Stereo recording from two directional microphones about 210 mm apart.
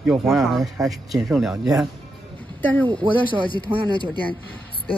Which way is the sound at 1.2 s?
Centre (ahead or behind).